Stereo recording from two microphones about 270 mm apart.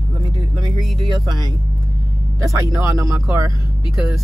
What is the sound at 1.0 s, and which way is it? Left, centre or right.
Speech, centre.